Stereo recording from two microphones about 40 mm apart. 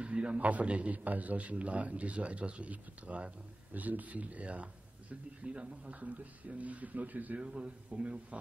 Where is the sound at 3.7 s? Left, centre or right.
Right.